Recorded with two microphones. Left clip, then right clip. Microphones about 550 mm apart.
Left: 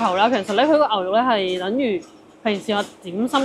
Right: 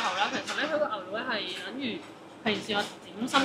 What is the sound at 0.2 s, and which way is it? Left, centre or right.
Speech, left.